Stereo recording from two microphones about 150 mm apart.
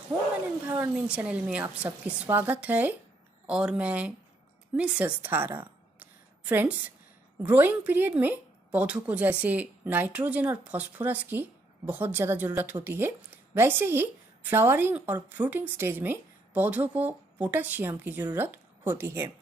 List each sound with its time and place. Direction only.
0.7 s a woman's voice: 10° right (ahead or behind)